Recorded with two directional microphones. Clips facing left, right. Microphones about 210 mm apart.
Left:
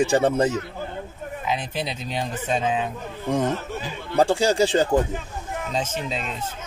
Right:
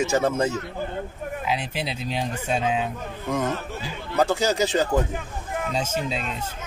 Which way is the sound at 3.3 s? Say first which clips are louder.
Left 3 dB; 30° left (ahead or behind).